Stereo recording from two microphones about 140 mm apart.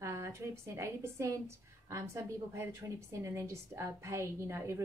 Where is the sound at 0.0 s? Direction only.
20° right (ahead or behind).